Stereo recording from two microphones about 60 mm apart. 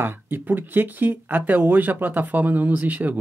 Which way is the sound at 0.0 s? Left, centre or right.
Right.